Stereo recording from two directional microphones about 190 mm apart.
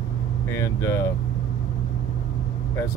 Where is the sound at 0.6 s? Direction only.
15° left (ahead or behind).